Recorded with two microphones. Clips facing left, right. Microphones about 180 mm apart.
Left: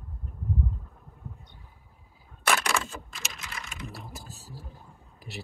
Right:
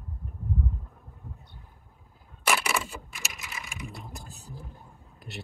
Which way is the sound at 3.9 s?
Centre (ahead or behind).